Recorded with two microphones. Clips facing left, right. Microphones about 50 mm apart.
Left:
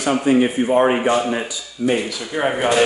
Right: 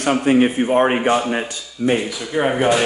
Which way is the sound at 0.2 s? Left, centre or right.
Right.